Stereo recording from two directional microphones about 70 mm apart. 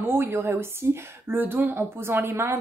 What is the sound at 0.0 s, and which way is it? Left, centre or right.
Speech, right.